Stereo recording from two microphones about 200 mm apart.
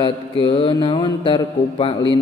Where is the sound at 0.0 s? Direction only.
25° left (ahead or behind).